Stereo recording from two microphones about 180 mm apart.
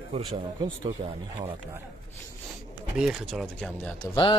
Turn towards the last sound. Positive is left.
turn(degrees=25)  # may be behind; listen again after turning